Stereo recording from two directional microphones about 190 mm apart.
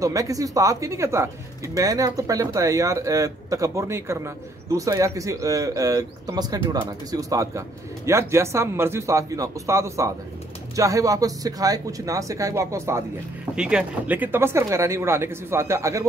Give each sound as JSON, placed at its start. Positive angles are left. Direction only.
{"t": 0.0, "sound": "a man's voice", "side_deg": -15}